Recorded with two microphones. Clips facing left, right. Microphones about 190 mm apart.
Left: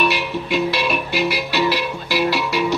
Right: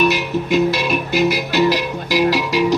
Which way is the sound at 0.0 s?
45° right (ahead or behind).